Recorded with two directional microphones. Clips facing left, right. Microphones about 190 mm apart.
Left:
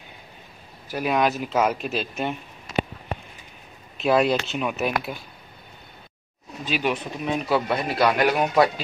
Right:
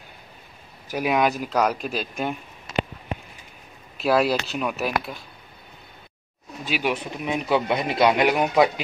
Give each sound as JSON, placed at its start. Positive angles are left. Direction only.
{"t": 0.9, "sound": "speech", "side_deg": -5}
{"t": 4.0, "sound": "speech", "side_deg": -5}
{"t": 6.6, "sound": "speech", "side_deg": -10}